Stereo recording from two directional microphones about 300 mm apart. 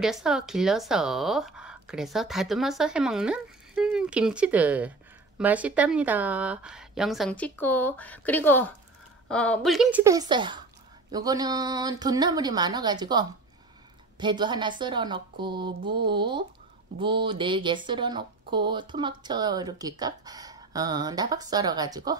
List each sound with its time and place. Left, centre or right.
0.0 s speech: centre